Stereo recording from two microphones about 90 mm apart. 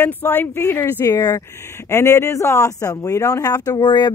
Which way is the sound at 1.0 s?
35° left (ahead or behind).